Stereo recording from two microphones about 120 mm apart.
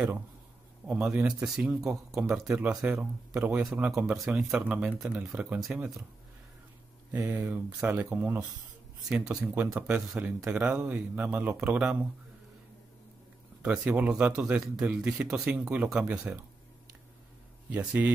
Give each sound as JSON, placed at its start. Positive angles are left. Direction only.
{"t": 1.0, "sound": "speech", "side_deg": -5}
{"t": 7.1, "sound": "speech", "side_deg": -15}
{"t": 9.6, "sound": "speech", "side_deg": -15}
{"t": 13.6, "sound": "speech", "side_deg": -10}
{"t": 17.6, "sound": "speech", "side_deg": -15}